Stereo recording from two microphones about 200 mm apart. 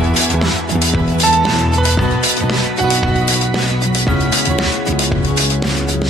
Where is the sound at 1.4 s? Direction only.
Centre (ahead or behind).